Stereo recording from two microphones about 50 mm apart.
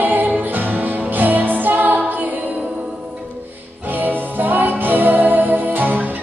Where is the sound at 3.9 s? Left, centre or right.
Right.